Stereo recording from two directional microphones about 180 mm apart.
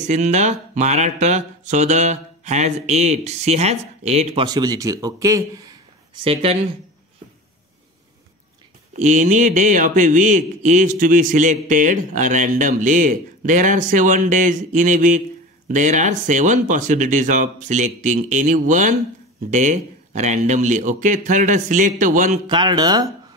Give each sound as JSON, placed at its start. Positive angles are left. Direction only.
{"t": 0.1, "sound": "speech", "side_deg": -40}
{"t": 4.5, "sound": "a man's voice", "side_deg": -20}
{"t": 6.2, "sound": "speech", "side_deg": -30}
{"t": 8.9, "sound": "speech", "side_deg": -45}
{"t": 22.5, "sound": "a man's voice", "side_deg": -25}